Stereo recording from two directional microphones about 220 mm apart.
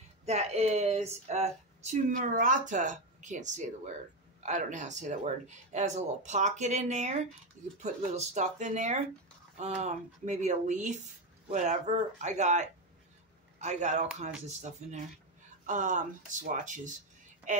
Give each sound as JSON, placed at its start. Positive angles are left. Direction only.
{"t": 0.2, "sound": "speech", "side_deg": -30}